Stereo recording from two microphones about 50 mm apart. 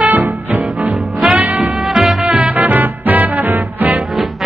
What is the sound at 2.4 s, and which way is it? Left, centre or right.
Swing music, right.